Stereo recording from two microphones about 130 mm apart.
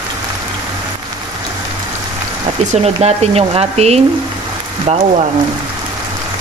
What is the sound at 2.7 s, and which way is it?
Speech, 55° right (ahead or behind).